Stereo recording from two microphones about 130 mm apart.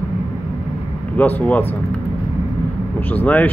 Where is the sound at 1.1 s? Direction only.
15° left (ahead or behind).